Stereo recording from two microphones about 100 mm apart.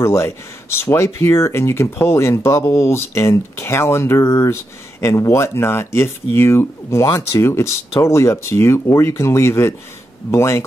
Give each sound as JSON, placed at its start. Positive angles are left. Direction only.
{"t": 0.0, "sound": "speech", "side_deg": 25}